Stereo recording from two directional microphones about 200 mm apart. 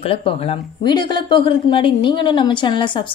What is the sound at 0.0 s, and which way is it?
Speech, 30° left (ahead or behind).